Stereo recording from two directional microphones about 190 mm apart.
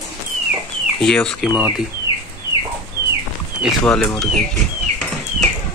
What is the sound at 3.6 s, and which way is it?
Speech, 5° left (ahead or behind).